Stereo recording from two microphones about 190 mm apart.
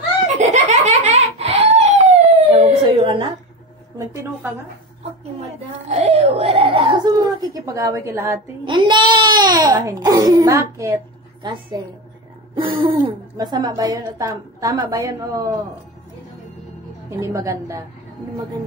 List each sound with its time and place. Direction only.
0.4 s a sound: 35° right (ahead or behind)
4.1 s a woman's voice: 15° right (ahead or behind)
5.4 s whimper: 35° right (ahead or behind); by 8.4 s 15° right (ahead or behind)
8.6 s speech: 25° right (ahead or behind)
17.2 s a woman's voice: 15° right (ahead or behind)